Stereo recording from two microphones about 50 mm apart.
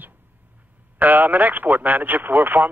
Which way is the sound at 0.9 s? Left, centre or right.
Right.